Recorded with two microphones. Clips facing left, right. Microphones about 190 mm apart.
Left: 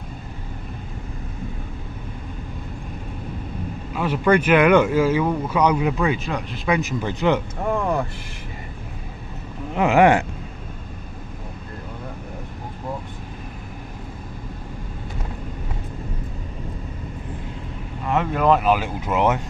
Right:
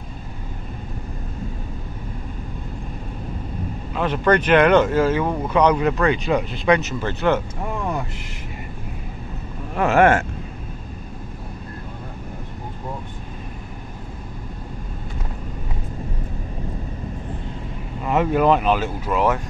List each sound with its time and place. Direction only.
3.9 s speech: 10° left (ahead or behind)
9.8 s speech: 15° left (ahead or behind)
18.1 s speech: 5° right (ahead or behind); by 19.4 s 20° left (ahead or behind)